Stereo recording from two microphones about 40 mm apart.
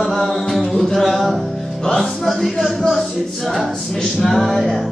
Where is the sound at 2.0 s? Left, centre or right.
Centre.